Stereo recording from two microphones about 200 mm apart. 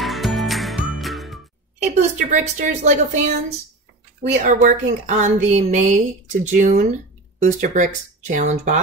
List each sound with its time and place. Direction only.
0.0 s music: centre (ahead or behind)
2.0 s a woman's voice: 40° right (ahead or behind)